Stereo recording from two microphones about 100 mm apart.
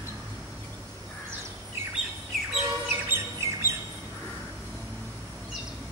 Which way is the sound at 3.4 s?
30° right (ahead or behind).